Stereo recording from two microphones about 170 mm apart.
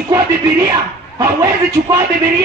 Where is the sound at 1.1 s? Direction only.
20° right (ahead or behind).